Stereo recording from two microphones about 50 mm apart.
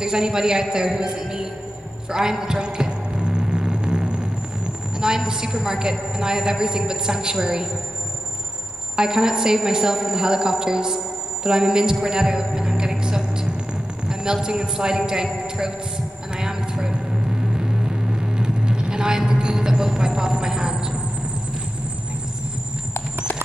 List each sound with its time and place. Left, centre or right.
0.0 s a man's voice: centre
8.9 s speech: centre
16.3 s vehicle: centre